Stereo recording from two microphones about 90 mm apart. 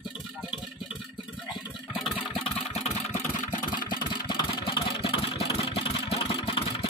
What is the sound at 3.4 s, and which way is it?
Vehicle, 60° left (ahead or behind).